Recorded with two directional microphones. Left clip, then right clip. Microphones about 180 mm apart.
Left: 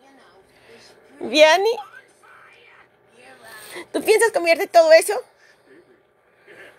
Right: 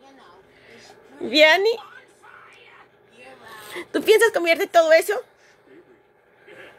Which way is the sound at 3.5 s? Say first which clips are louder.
Right 1 dB; 10° right (ahead or behind).